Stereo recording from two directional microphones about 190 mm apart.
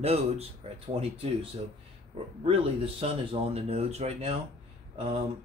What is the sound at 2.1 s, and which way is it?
Speech, 30° right (ahead or behind).